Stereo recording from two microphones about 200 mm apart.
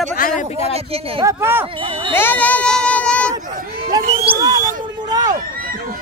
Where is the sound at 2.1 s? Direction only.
10° left (ahead or behind).